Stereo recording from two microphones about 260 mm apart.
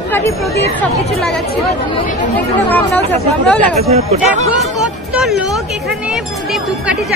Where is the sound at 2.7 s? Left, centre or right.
Centre.